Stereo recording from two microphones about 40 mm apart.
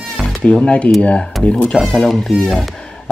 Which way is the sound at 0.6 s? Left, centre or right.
Left.